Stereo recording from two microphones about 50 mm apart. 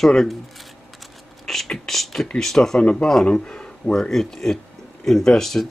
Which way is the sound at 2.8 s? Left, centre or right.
Left.